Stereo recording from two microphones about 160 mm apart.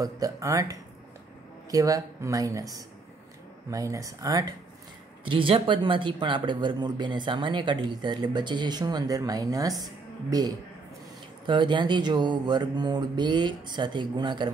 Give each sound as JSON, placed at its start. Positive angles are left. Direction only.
{"t": 0.0, "sound": "speech", "side_deg": -20}
{"t": 3.7, "sound": "speech", "side_deg": -20}
{"t": 5.2, "sound": "speech", "side_deg": -30}
{"t": 11.4, "sound": "speech", "side_deg": -30}